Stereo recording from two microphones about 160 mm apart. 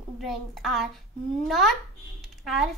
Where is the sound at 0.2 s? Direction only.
Centre (ahead or behind).